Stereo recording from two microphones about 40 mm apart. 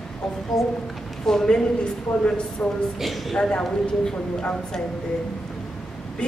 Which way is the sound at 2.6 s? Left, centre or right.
Left.